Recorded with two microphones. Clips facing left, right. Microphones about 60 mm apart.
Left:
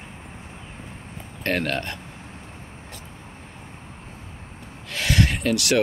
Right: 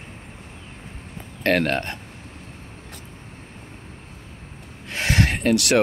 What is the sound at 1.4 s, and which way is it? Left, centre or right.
Speech, right.